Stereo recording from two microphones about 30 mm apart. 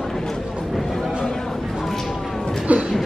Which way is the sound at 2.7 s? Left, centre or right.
Right.